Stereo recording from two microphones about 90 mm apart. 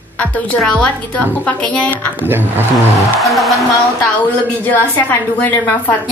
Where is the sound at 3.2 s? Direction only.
Centre (ahead or behind).